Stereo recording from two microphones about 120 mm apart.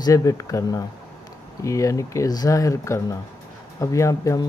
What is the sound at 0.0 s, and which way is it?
Speech, 30° left (ahead or behind).